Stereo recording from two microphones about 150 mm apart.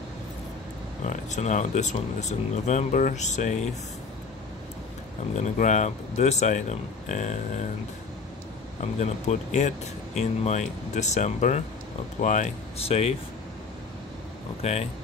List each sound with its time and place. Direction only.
1.0 s speech: 50° left (ahead or behind)
5.4 s speech: 50° left (ahead or behind)
9.0 s speech: 50° left (ahead or behind)
14.6 s speech: 45° left (ahead or behind)